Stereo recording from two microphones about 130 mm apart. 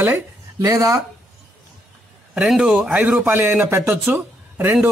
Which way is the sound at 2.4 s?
5° right (ahead or behind).